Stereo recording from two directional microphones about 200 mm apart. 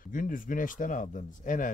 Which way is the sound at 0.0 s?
40° left (ahead or behind).